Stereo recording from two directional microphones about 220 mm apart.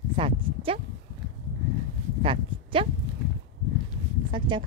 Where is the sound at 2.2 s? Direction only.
25° right (ahead or behind).